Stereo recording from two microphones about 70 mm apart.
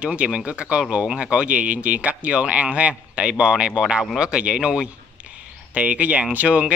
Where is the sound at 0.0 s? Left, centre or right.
Centre.